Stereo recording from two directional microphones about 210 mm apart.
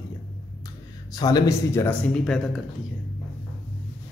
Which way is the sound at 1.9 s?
Centre (ahead or behind).